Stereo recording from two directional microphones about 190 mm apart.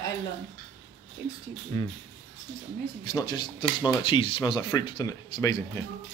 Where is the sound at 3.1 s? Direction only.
20° left (ahead or behind).